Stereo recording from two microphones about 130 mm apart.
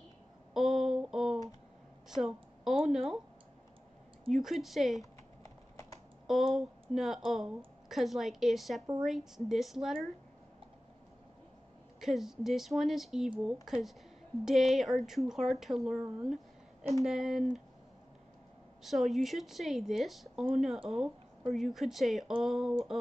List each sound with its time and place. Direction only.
0.6 s a sound: centre (ahead or behind)
2.0 s speech: 5° right (ahead or behind)
4.3 s a woman's voice: centre (ahead or behind)
5.4 s typing: 25° left (ahead or behind)
6.2 s a woman's voice: centre (ahead or behind)
12.0 s a woman's voice: 5° right (ahead or behind)
18.8 s a woman's voice: centre (ahead or behind)